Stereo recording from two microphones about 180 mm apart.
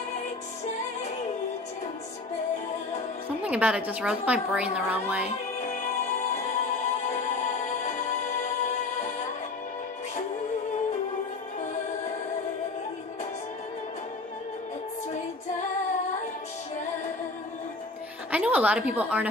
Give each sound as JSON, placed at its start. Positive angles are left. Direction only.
{"t": 3.4, "sound": "a woman's voice", "side_deg": -5}
{"t": 5.6, "sound": "music", "side_deg": 45}
{"t": 18.3, "sound": "a sound", "side_deg": -10}